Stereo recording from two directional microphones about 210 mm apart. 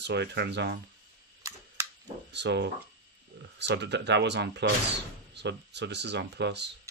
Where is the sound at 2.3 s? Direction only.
55° right (ahead or behind).